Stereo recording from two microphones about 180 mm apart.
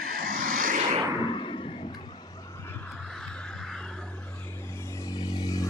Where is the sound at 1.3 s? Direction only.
30° left (ahead or behind).